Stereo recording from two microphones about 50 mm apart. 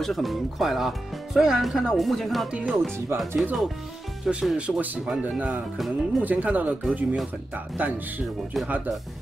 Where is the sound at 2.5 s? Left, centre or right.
Right.